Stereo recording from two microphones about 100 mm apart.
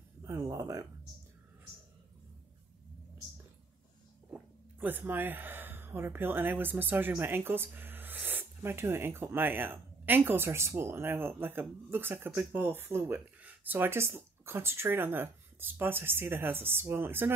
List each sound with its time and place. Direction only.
0.2 s speech: 25° right (ahead or behind)
4.3 s speech: 20° right (ahead or behind)